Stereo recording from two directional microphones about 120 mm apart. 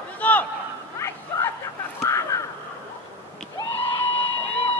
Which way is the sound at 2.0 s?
25° left (ahead or behind).